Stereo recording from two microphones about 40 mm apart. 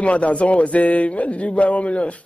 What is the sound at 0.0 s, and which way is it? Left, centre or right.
A man's voice, left.